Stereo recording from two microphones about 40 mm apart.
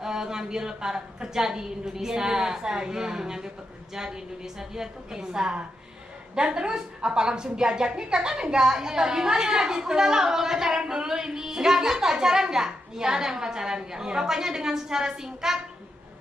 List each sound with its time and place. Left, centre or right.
0.0 s a woman's voice: centre